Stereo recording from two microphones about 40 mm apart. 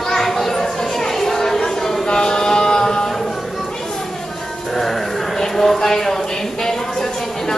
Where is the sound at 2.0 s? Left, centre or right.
Centre.